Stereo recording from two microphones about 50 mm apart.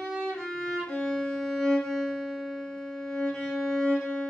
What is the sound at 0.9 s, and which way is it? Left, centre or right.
Music, centre.